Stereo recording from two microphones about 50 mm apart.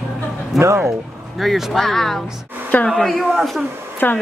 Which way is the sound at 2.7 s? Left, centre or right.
Left.